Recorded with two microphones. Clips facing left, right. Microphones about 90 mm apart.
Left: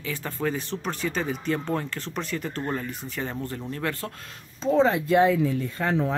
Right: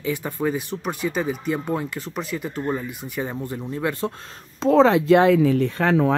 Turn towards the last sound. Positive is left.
turn(degrees=-80)